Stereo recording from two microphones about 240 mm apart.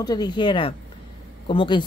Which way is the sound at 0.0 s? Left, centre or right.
Centre.